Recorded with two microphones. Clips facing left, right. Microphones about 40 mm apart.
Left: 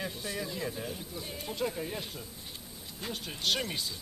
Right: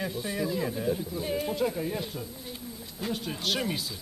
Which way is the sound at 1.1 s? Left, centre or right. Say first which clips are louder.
Right 10 dB; centre.